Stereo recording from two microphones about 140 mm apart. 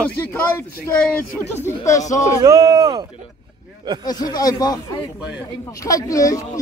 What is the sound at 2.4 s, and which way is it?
Speech, 25° right (ahead or behind).